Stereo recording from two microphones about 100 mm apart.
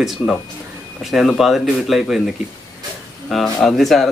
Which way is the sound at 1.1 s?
Centre (ahead or behind).